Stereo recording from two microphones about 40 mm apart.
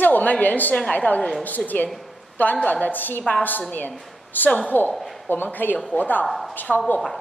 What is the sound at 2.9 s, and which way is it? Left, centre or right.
Speech, left.